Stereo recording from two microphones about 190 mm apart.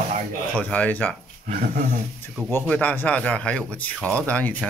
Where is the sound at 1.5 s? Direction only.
35° right (ahead or behind).